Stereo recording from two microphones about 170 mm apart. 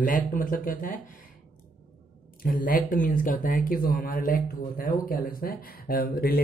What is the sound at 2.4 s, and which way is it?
Speech, 55° left (ahead or behind).